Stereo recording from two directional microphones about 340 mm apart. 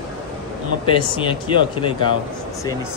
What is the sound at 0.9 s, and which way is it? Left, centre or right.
Speech, centre.